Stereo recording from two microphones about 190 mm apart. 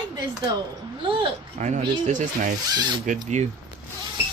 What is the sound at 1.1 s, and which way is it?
Speech, 35° right (ahead or behind).